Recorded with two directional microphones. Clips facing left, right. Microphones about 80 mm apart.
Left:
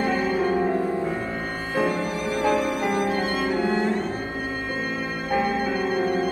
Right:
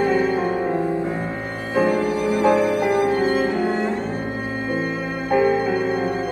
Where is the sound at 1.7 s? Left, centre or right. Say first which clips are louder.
Right 6 dB; centre.